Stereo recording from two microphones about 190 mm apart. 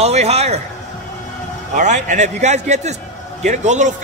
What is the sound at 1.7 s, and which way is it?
A man's voice, 40° right (ahead or behind).